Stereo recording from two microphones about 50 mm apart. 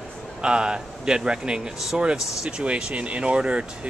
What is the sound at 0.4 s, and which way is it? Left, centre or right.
Speech, centre.